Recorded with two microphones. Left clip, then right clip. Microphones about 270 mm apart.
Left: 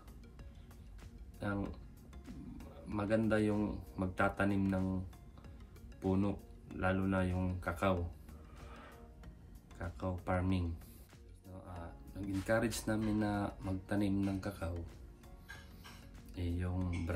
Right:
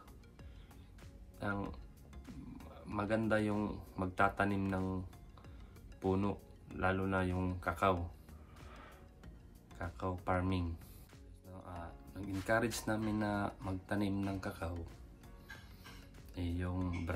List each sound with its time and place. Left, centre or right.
1.4 s speech: centre
2.2 s music: centre
3.0 s speech: centre
5.9 s speech: centre
9.8 s speech: centre
12.1 s music: centre
12.4 s speech: centre
16.3 s speech: centre